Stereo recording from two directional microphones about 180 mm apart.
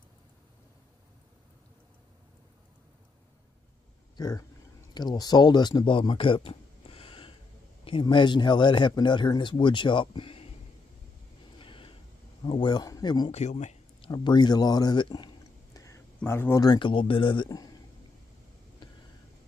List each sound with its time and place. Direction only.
4.2 s speech: 20° left (ahead or behind)
11.5 s a sound: 30° left (ahead or behind)
12.4 s speech: 25° left (ahead or behind)
13.3 s speech: 40° left (ahead or behind)
14.1 s speech: 25° left (ahead or behind)
18.8 s vehicle: 25° left (ahead or behind)